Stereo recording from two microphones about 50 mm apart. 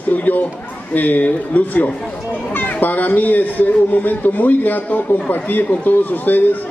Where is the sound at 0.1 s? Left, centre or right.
Left.